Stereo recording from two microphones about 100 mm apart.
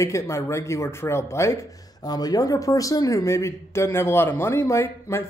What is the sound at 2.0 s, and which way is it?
Speech, 40° left (ahead or behind).